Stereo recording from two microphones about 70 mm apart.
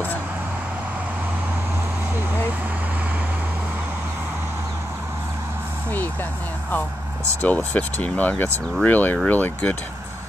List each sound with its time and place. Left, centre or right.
7.4 s speech: left